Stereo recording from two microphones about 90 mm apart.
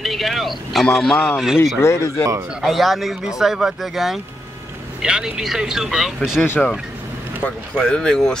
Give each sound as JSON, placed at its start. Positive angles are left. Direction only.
{"t": 0.0, "sound": "speech", "side_deg": 0}
{"t": 1.8, "sound": "speech", "side_deg": 35}
{"t": 2.6, "sound": "speech", "side_deg": 0}
{"t": 6.4, "sound": "speech", "side_deg": 25}
{"t": 7.4, "sound": "speech", "side_deg": 10}